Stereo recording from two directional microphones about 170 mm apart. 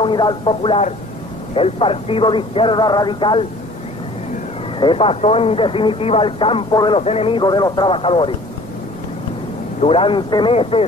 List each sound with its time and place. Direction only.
0.0 s speech: 25° left (ahead or behind)
4.7 s speech: 30° left (ahead or behind)
7.0 s speech: 35° left (ahead or behind)
9.8 s speech: 35° left (ahead or behind)